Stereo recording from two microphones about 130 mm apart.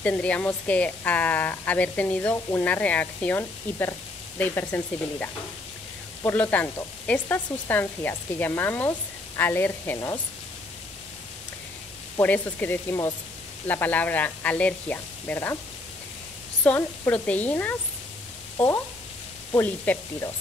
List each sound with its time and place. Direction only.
0.0 s speech: 10° left (ahead or behind)
12.2 s speech: 15° left (ahead or behind)
16.6 s speech: 10° left (ahead or behind)
19.6 s speech: 15° left (ahead or behind)